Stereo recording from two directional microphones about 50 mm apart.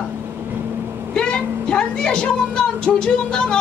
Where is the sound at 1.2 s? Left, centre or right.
Centre.